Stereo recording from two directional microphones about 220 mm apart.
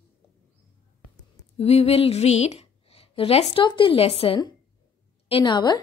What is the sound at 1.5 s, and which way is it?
A woman's voice, 30° left (ahead or behind).